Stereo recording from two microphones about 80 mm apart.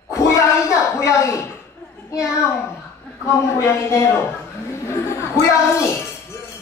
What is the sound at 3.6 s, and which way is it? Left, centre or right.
Speech, left.